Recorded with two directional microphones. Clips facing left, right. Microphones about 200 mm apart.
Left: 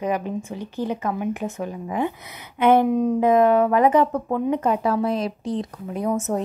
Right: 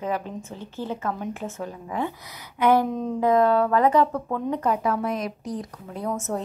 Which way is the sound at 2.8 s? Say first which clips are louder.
Left 5 dB; 10° left (ahead or behind).